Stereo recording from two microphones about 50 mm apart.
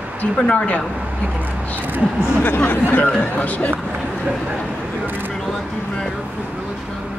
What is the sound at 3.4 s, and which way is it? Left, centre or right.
Speech, left.